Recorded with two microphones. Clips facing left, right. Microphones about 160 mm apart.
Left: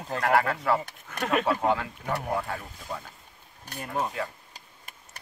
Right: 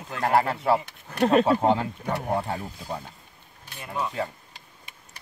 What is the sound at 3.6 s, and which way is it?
Speech, 45° left (ahead or behind).